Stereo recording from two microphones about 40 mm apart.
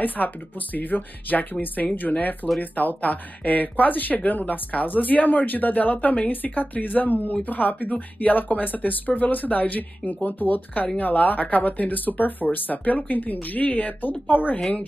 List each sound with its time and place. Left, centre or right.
0.2 s speech: left